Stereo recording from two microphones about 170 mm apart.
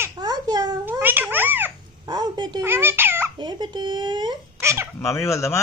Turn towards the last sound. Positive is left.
turn(degrees=15)  # may be behind; listen again after turning